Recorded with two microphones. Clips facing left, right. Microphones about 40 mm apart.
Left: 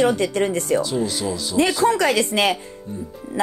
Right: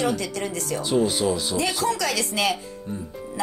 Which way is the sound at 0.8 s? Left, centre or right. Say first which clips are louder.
Right 1 dB; centre.